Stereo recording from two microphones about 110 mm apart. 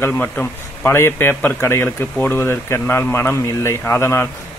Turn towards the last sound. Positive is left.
turn(degrees=20)  # may be behind; listen again after turning